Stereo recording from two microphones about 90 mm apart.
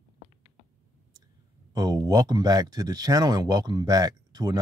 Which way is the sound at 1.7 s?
45° right (ahead or behind).